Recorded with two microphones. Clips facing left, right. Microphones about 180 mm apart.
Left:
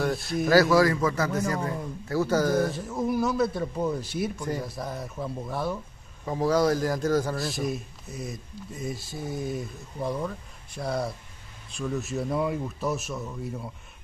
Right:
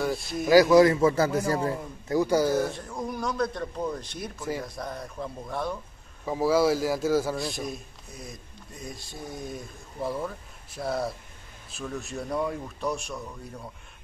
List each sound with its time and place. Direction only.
0.0 s speech: centre (ahead or behind)
0.5 s a man's voice: 15° right (ahead or behind)
2.0 s a man's voice: 15° right (ahead or behind); by 5.8 s 5° left (ahead or behind)
6.2 s a man's voice: 5° right (ahead or behind)